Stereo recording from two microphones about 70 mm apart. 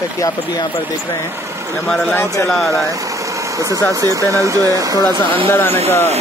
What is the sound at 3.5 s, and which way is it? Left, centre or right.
Speech, right.